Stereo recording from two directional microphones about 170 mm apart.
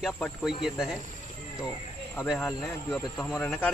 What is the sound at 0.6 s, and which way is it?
Speech, 5° right (ahead or behind).